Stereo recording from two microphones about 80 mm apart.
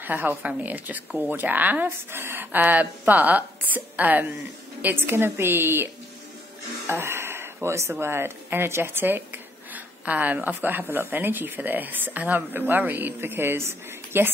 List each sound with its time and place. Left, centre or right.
0.0 s speech: right
6.9 s dishes: right
7.9 s speech: right